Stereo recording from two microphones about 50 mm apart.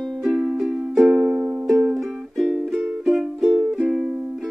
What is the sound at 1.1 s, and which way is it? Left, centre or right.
Music, right.